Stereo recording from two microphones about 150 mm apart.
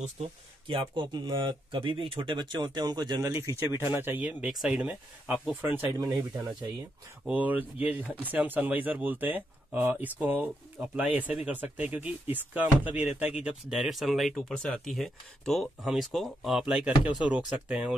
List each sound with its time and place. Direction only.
0.0 s speech: 40° right (ahead or behind)
3.3 s speech: 15° right (ahead or behind)
7.2 s speech: 10° right (ahead or behind)